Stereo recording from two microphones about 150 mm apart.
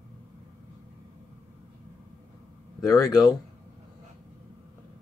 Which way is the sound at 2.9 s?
25° left (ahead or behind).